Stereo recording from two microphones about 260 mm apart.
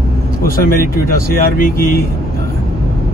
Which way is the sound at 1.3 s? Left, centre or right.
Left.